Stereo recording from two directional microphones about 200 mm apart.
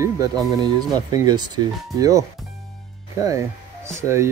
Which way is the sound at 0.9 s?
20° right (ahead or behind).